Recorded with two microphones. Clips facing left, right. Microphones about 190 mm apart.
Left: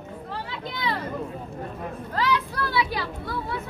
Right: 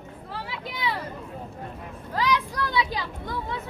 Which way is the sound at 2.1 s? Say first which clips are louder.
Even; 15° right (ahead or behind).